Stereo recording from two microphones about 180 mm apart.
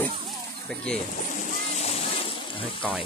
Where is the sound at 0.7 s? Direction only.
5° left (ahead or behind).